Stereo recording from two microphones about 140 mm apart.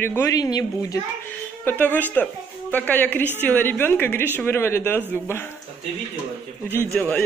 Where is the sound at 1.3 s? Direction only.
15° left (ahead or behind).